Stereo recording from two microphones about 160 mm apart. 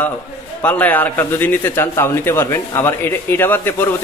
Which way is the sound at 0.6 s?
10° left (ahead or behind).